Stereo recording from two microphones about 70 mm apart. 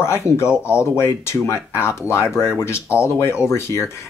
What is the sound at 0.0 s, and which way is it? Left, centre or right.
Speech, left.